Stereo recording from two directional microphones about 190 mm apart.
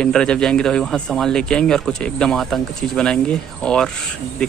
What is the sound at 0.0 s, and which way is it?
Speech, 5° left (ahead or behind).